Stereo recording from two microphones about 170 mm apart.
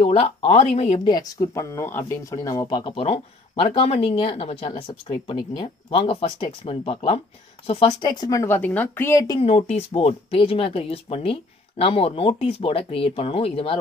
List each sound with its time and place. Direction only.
0.0 s a woman's voice: 35° left (ahead or behind); by 9.4 s 15° left (ahead or behind)
9.4 s a woman's voice: 35° left (ahead or behind)